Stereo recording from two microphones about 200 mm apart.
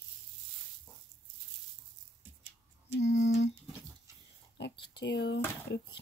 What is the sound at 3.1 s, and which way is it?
Speech, 65° left (ahead or behind).